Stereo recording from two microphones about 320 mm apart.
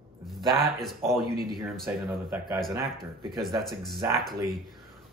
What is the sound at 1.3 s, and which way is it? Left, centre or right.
Speech, right.